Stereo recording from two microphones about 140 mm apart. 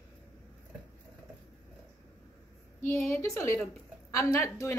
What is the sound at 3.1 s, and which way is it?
Speech, 20° left (ahead or behind).